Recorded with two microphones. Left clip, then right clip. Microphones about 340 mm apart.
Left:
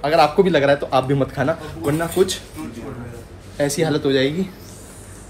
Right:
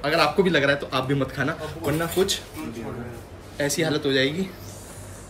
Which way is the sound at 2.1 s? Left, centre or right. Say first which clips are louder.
Left 5 dB; centre.